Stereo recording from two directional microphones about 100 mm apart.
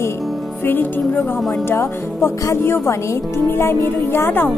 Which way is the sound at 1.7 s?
30° left (ahead or behind).